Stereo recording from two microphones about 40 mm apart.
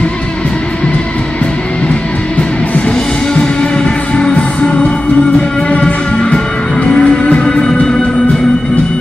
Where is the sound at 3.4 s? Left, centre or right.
Left.